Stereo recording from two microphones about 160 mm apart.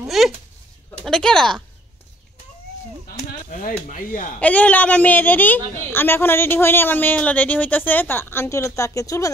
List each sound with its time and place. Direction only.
0.2 s speech: centre (ahead or behind)
3.3 s a sound: 60° left (ahead or behind)
3.9 s speech: 55° left (ahead or behind)
4.4 s a woman's voice: 10° left (ahead or behind)